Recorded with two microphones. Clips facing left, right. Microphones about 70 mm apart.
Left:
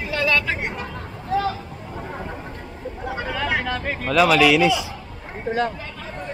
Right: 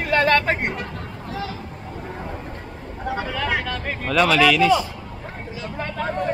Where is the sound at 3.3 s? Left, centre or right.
Centre.